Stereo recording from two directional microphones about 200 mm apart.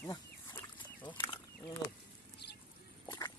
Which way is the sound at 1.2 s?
20° left (ahead or behind).